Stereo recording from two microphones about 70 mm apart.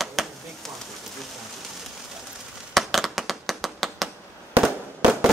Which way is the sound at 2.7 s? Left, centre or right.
Centre.